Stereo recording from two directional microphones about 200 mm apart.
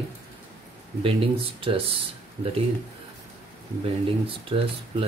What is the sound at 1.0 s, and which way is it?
Speech, 25° right (ahead or behind).